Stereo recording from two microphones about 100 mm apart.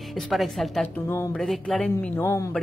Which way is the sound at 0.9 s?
25° left (ahead or behind).